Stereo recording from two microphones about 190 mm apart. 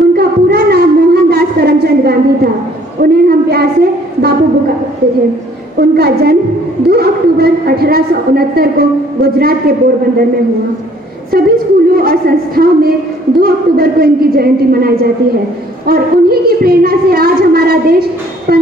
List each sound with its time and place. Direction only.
0.1 s a sound: 55° right (ahead or behind)
5.8 s a sound: 55° right (ahead or behind)
6.9 s a woman's voice: 55° right (ahead or behind)
11.3 s speech: 50° right (ahead or behind)
15.9 s speech: 55° right (ahead or behind)
18.5 s music: 55° right (ahead or behind)